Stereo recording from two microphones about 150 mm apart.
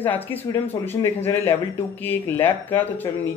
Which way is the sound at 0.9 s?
15° left (ahead or behind).